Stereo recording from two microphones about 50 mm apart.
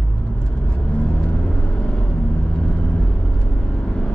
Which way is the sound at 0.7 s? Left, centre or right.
Left.